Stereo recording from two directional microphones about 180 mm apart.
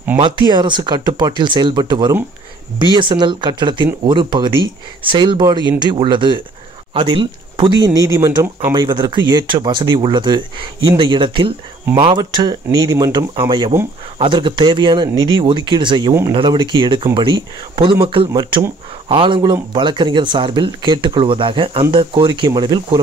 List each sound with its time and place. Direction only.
0.2 s speech: 25° right (ahead or behind)